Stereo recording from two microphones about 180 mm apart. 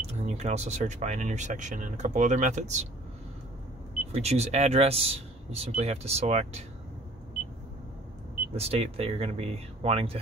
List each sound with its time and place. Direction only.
0.2 s speech: 40° right (ahead or behind)
4.1 s speech: 35° right (ahead or behind)
8.5 s speech: 35° right (ahead or behind)